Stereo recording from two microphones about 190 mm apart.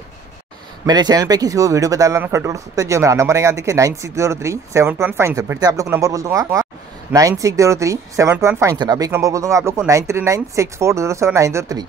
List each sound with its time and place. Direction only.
0.8 s speech: 20° right (ahead or behind)